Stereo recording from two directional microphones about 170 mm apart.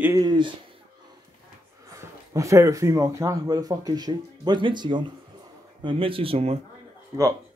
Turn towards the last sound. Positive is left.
turn(degrees=-20)  # may be behind; listen again after turning